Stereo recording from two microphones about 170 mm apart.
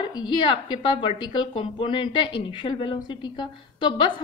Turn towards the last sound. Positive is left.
turn(degrees=30)  # may be behind; listen again after turning